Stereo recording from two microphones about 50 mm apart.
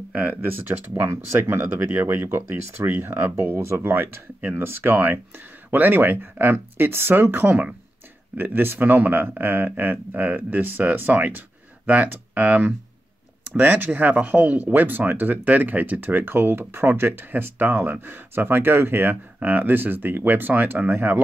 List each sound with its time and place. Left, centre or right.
0.1 s speech: right
3.0 s speech: right
3.5 s speech: right